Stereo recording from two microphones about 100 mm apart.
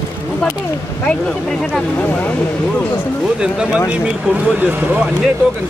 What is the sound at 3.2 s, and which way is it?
Speech, 10° right (ahead or behind).